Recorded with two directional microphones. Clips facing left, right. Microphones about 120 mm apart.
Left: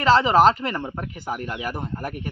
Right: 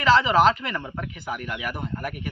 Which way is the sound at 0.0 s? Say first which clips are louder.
Left 2 dB; 40° left (ahead or behind).